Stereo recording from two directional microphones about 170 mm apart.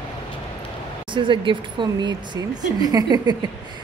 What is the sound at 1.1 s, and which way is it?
Speech, 30° right (ahead or behind).